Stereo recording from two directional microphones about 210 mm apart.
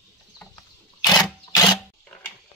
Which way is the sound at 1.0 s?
20° left (ahead or behind).